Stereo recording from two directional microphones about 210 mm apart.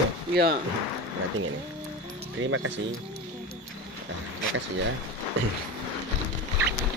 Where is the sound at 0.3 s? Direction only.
50° right (ahead or behind).